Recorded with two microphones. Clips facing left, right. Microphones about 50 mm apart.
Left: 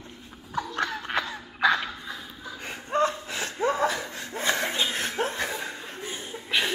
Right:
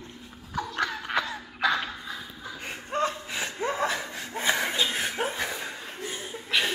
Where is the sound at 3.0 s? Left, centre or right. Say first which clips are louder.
Left 2 dB; centre.